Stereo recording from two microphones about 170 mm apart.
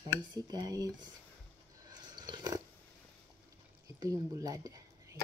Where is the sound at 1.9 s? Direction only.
25° right (ahead or behind).